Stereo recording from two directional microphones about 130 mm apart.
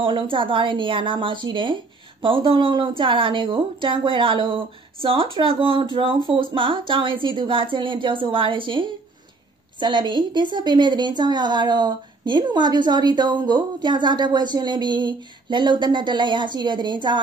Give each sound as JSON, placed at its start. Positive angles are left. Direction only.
{"t": 0.0, "sound": "a woman's voice", "side_deg": -40}